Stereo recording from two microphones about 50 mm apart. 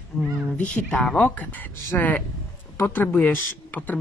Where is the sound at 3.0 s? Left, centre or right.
Left.